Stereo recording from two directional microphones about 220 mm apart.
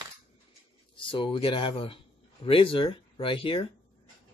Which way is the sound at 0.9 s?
25° left (ahead or behind).